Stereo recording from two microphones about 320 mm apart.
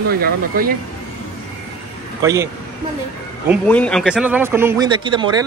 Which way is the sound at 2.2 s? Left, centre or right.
Centre.